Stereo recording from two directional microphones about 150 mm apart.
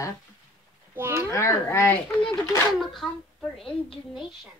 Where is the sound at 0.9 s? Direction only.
15° right (ahead or behind).